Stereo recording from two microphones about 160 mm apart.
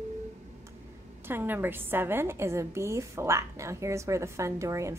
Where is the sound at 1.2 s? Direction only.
15° right (ahead or behind).